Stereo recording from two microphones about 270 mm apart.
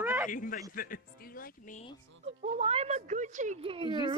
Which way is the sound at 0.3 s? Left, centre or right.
Left.